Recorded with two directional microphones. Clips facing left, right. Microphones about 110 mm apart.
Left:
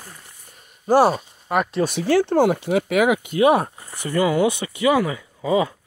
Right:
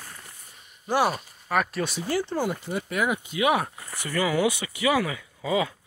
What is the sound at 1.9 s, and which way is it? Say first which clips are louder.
Speech: left 9 dB; 75° left (ahead or behind).